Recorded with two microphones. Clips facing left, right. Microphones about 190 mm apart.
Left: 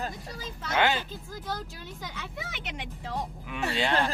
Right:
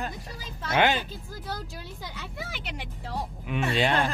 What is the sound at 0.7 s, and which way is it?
Speech, 15° right (ahead or behind).